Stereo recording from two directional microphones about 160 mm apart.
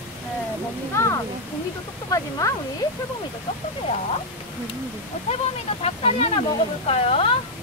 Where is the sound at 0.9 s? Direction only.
20° left (ahead or behind).